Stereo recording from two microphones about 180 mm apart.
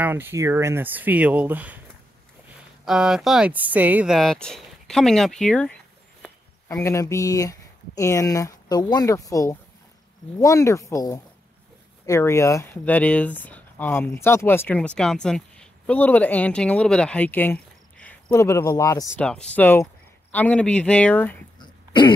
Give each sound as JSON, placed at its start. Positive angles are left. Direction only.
{"t": 0.0, "sound": "speech", "side_deg": -10}
{"t": 2.8, "sound": "speech", "side_deg": -5}
{"t": 6.7, "sound": "speech", "side_deg": 20}
{"t": 19.1, "sound": "speech", "side_deg": 5}
{"t": 21.5, "sound": "throat clearing", "side_deg": 25}